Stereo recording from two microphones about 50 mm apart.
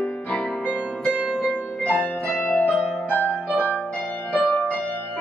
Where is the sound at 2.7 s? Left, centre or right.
Left.